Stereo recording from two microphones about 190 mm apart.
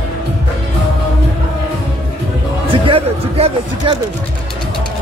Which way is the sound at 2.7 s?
30° right (ahead or behind).